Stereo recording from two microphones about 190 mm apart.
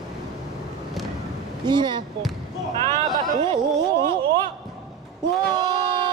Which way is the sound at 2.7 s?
30° right (ahead or behind).